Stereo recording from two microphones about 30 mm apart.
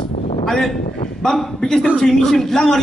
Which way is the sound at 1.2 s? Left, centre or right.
Centre.